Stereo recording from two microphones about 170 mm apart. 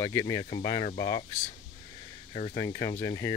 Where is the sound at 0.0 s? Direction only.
20° left (ahead or behind).